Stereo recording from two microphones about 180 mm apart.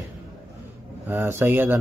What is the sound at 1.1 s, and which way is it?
Speech, 15° right (ahead or behind).